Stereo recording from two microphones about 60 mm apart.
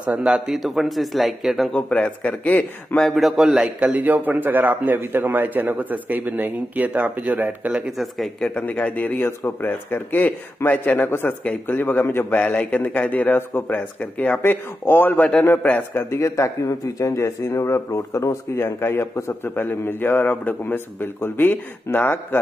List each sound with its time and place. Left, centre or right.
0.0 s a man's voice: right
0.5 s speech: centre
1.7 s speech: centre
3.0 s speech: centre
3.6 s a man's voice: right
8.6 s speech: left
11.1 s speech: left
12.4 s speech: left
16.2 s a man's voice: left